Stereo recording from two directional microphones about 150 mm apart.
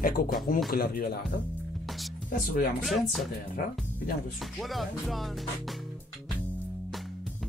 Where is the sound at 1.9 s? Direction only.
Centre (ahead or behind).